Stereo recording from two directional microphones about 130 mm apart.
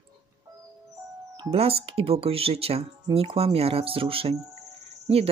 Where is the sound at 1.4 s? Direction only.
50° right (ahead or behind).